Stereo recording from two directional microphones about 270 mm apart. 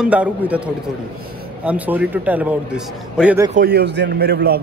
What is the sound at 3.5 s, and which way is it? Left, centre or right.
A man's voice, right.